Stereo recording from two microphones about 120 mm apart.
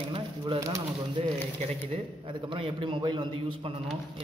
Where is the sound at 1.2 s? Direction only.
50° right (ahead or behind).